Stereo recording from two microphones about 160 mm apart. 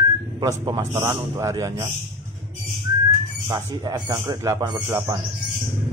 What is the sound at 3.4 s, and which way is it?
A man's voice, 20° right (ahead or behind).